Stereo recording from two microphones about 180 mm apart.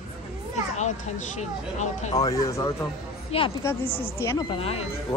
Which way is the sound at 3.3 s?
35° left (ahead or behind).